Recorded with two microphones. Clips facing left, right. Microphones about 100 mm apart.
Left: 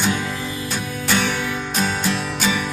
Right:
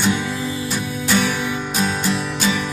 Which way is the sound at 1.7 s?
5° right (ahead or behind).